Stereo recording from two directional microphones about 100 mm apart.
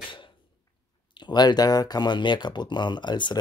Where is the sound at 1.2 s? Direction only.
45° left (ahead or behind).